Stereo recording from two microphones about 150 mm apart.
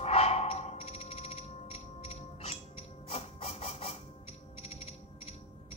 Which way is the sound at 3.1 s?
45° left (ahead or behind).